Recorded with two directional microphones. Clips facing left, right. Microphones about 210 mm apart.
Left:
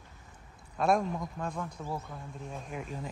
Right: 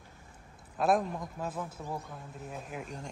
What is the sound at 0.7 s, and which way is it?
A man's voice, centre (ahead or behind).